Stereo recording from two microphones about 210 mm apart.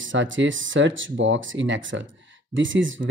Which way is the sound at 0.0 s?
65° right (ahead or behind).